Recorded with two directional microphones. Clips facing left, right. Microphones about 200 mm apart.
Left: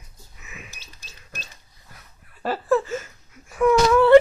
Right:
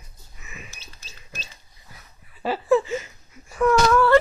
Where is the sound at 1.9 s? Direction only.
5° right (ahead or behind).